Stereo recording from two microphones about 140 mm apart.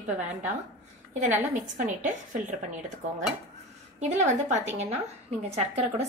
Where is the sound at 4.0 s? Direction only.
55° right (ahead or behind).